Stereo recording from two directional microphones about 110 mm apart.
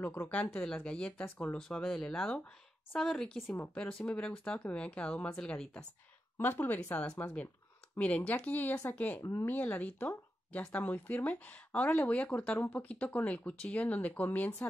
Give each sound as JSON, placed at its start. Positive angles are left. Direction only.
{"t": 0.0, "sound": "speech", "side_deg": 15}
{"t": 3.4, "sound": "speech", "side_deg": 20}
{"t": 3.7, "sound": "speech", "side_deg": 10}
{"t": 6.3, "sound": "speech", "side_deg": 20}